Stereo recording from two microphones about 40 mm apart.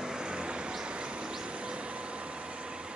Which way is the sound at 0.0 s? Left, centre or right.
Centre.